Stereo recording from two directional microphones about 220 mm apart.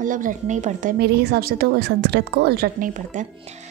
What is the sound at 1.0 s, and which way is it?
A woman's voice, 50° right (ahead or behind).